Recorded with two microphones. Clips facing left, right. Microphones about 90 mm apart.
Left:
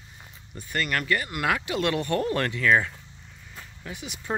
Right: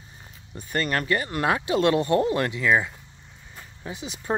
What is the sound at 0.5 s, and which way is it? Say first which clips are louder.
Speech: right 2 dB; 35° right (ahead or behind).